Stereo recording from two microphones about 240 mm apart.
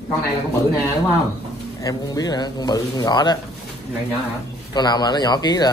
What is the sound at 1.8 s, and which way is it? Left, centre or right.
Speech, centre.